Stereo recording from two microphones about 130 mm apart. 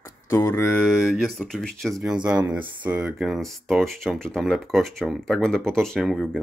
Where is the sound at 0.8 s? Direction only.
Centre (ahead or behind).